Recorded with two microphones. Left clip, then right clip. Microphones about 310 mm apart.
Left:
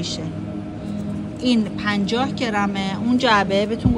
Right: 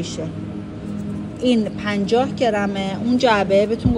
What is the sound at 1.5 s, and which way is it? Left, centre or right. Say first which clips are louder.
A woman's voice: right 1 dB; centre.